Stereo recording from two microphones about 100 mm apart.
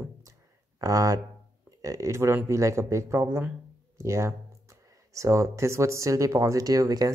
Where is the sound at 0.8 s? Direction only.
35° right (ahead or behind).